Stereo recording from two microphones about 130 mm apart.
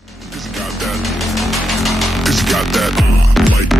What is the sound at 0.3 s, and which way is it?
Music, centre (ahead or behind).